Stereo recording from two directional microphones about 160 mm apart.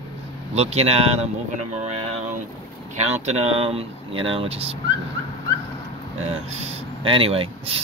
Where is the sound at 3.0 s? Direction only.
45° right (ahead or behind).